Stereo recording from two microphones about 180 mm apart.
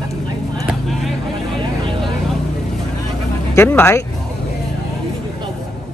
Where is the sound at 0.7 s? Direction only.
Centre (ahead or behind).